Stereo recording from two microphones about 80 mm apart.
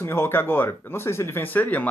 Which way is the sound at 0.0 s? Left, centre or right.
Left.